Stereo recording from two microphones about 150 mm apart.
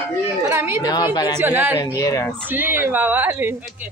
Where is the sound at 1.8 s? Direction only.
25° left (ahead or behind).